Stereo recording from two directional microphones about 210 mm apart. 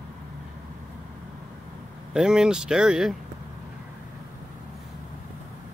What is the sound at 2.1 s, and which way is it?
Speech, 5° right (ahead or behind).